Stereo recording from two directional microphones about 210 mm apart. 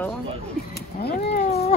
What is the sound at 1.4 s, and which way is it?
Cat, 30° left (ahead or behind).